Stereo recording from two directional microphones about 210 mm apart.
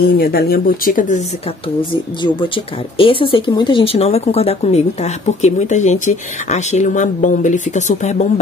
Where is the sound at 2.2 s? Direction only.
25° left (ahead or behind).